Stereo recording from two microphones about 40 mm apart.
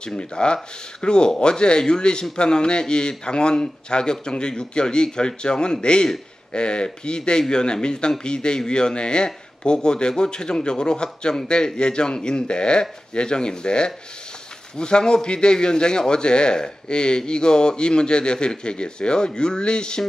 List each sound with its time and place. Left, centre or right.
0.0 s a man's voice: left